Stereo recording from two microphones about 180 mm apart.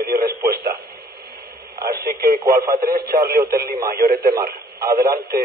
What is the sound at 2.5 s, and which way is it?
Speech, 20° right (ahead or behind).